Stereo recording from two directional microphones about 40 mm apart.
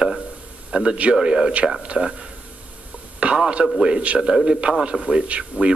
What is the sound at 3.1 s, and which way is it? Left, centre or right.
A man's voice, right.